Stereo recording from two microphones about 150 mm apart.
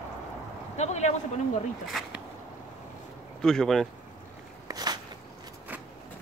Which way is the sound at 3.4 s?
5° left (ahead or behind).